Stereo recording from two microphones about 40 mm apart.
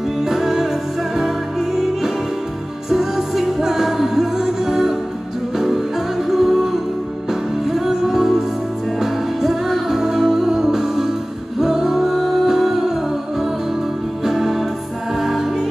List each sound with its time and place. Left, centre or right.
0.2 s music: centre
2.9 s music: centre
6.2 s music: centre
14.2 s music: centre